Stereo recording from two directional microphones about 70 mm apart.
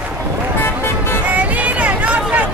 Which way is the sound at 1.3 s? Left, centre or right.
Right.